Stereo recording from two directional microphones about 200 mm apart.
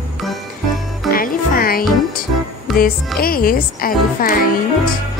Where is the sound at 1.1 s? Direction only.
45° left (ahead or behind).